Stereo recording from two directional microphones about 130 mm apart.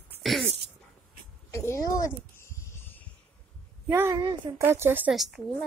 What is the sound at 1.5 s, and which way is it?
Speech, 25° left (ahead or behind).